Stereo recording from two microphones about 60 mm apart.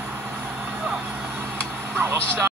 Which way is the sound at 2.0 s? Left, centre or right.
Right.